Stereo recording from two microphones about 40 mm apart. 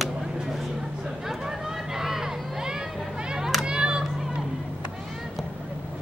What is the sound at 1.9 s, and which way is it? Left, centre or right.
Crowd, centre.